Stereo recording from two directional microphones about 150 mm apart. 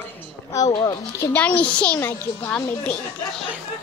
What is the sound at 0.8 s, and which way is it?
Speech, 20° left (ahead or behind).